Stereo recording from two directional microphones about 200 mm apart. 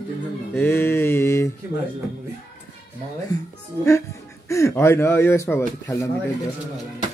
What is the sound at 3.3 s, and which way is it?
Music, 20° left (ahead or behind).